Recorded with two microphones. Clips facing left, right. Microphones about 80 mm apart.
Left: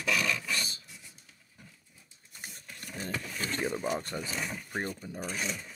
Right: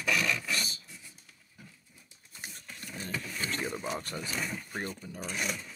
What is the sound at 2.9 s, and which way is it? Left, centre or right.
Vehicle, left.